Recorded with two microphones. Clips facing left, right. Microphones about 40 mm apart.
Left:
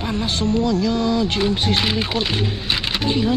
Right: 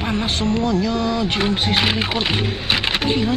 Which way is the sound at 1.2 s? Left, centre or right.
Right.